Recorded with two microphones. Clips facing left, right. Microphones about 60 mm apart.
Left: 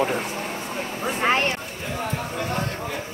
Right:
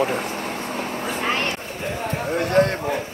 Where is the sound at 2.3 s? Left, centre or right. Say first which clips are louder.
Right 12 dB; right.